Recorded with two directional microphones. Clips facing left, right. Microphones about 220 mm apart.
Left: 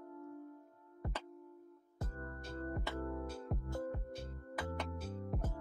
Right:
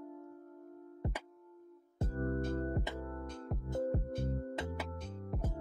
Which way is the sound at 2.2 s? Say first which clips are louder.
Right 11 dB; 50° right (ahead or behind).